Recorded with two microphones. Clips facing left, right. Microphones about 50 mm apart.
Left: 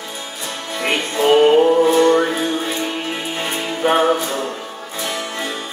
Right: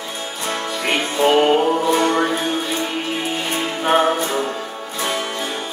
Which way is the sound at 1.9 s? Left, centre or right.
Right.